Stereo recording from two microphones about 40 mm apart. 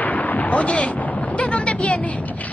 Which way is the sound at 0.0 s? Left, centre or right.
Left.